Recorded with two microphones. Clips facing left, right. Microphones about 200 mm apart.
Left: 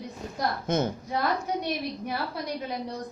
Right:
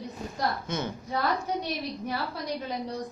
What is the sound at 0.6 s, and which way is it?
Speech, 45° left (ahead or behind).